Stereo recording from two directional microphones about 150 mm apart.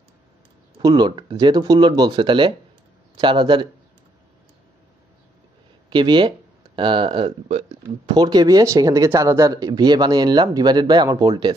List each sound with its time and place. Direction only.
0.7 s speech: 30° right (ahead or behind)
5.9 s speech: 30° right (ahead or behind)
8.1 s speech: 25° right (ahead or behind)